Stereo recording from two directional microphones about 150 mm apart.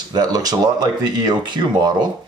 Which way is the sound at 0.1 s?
25° right (ahead or behind).